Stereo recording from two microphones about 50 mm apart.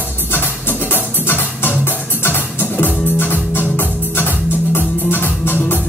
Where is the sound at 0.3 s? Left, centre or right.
Left.